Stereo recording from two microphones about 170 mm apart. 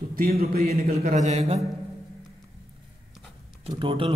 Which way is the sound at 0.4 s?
65° right (ahead or behind).